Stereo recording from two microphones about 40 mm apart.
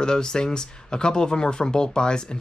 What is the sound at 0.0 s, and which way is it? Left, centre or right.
Speech, centre.